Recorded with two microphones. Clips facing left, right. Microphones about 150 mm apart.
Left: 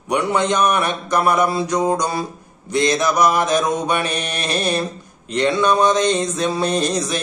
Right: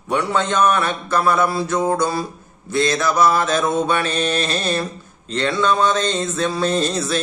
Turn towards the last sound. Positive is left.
turn(degrees=15)  # may be behind; listen again after turning